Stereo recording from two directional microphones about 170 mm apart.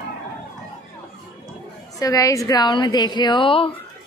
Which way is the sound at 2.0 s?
20° left (ahead or behind).